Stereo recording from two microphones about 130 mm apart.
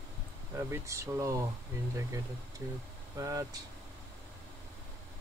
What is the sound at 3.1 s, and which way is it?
Speech, 25° right (ahead or behind).